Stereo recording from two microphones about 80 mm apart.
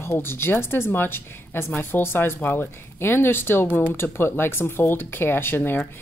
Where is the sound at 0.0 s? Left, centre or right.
Left.